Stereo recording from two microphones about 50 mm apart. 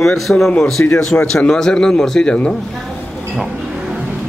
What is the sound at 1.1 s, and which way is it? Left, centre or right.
Speech, centre.